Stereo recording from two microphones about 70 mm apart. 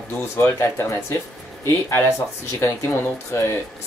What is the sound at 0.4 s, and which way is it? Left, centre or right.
Speech, left.